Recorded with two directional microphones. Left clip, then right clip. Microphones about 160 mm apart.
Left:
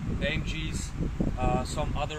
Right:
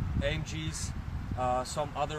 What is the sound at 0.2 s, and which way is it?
Speech, centre (ahead or behind).